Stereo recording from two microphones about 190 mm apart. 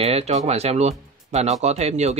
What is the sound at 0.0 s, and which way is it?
Speech, 35° right (ahead or behind).